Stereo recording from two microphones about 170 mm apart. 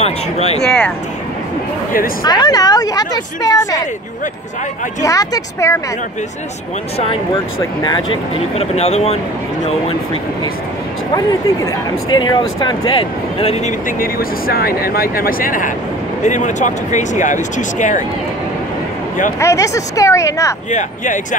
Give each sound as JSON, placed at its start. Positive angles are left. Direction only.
{"t": 0.0, "sound": "speech", "side_deg": 40}
{"t": 0.6, "sound": "speech", "side_deg": 5}
{"t": 2.2, "sound": "a woman's voice", "side_deg": 25}
{"t": 5.0, "sound": "a woman's voice", "side_deg": 20}
{"t": 7.8, "sound": "speech", "side_deg": 30}
{"t": 12.3, "sound": "a woman's voice", "side_deg": 25}
{"t": 13.8, "sound": "speech", "side_deg": 55}
{"t": 19.4, "sound": "speech", "side_deg": 20}
{"t": 20.7, "sound": "speech", "side_deg": 50}